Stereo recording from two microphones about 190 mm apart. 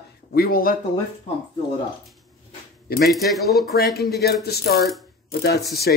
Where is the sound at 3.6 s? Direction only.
55° left (ahead or behind).